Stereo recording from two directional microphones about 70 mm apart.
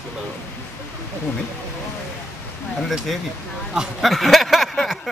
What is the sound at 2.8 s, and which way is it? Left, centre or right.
Speech, centre.